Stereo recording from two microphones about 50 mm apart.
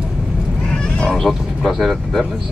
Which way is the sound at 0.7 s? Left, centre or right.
Centre.